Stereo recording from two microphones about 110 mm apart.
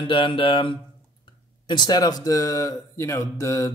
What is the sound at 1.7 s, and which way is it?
Speech, 40° left (ahead or behind).